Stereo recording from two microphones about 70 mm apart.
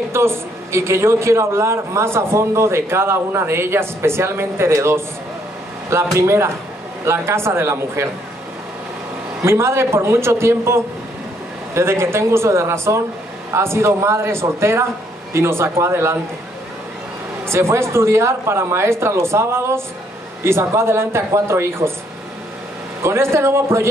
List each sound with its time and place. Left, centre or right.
0.1 s a man's voice: right
6.1 s a man's voice: right
9.4 s a man's voice: right
17.5 s a man's voice: right
23.0 s a man's voice: right